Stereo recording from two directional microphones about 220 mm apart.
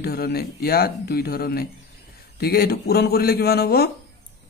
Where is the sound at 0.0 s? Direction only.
45° left (ahead or behind).